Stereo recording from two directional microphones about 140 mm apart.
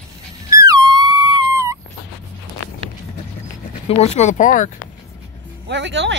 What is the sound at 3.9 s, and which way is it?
Speech, 50° left (ahead or behind).